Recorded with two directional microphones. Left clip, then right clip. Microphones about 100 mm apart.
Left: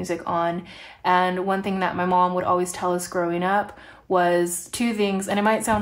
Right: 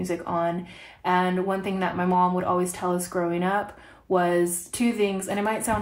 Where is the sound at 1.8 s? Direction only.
20° left (ahead or behind).